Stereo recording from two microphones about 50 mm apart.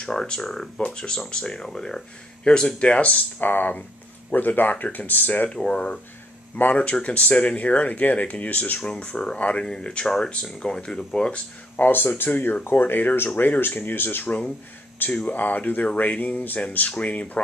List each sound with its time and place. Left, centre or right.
0.0 s speech: centre; by 5.5 s left
5.5 s speech: centre
6.5 s speech: left
11.8 s speech: left